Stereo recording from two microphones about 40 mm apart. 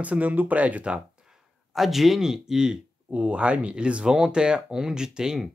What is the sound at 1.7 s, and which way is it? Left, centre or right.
Speech, centre.